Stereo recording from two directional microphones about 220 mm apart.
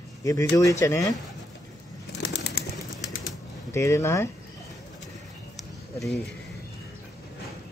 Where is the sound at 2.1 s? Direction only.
50° left (ahead or behind).